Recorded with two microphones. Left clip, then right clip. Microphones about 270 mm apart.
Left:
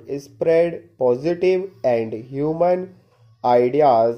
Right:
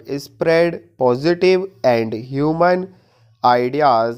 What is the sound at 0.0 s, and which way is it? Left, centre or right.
Speech, right.